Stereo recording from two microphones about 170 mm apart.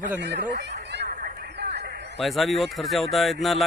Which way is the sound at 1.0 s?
55° right (ahead or behind).